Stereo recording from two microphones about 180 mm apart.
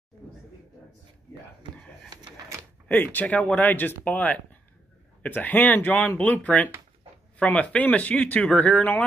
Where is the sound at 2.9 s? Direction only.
10° left (ahead or behind).